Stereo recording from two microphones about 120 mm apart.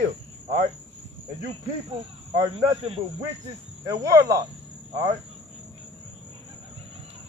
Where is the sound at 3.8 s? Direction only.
25° right (ahead or behind).